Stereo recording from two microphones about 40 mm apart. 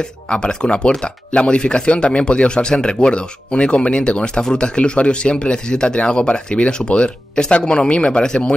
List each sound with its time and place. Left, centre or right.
0.0 s speech: left